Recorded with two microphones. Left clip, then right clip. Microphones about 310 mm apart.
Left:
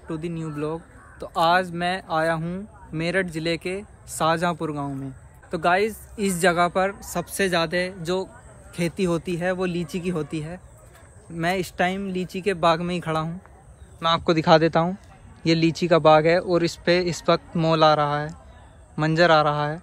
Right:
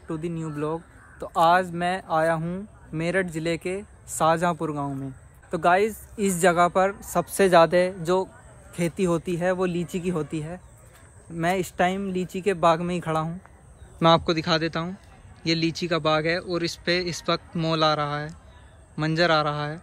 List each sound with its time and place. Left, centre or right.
0.1 s a woman's voice: centre